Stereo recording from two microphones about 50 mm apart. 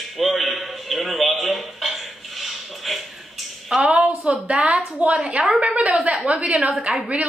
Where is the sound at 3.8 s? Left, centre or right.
Right.